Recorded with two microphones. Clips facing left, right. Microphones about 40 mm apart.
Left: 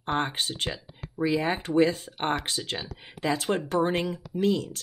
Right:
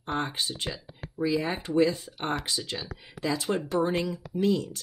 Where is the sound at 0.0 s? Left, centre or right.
Left.